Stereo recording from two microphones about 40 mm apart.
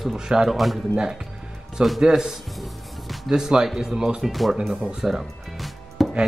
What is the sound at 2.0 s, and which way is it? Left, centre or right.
Speech, centre.